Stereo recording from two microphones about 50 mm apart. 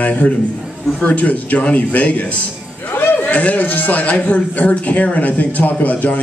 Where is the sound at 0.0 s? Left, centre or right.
Left.